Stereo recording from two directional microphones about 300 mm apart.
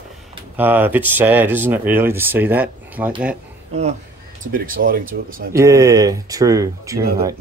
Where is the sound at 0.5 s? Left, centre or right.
Centre.